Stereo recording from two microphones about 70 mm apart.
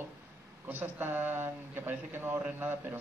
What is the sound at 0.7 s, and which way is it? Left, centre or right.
A man's voice, right.